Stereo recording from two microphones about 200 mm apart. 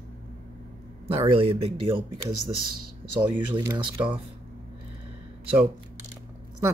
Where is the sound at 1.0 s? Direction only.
25° right (ahead or behind).